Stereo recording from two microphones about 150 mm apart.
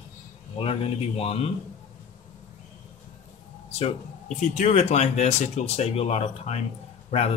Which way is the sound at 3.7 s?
45° left (ahead or behind).